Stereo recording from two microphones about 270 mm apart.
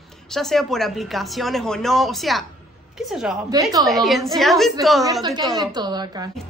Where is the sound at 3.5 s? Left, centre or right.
Centre.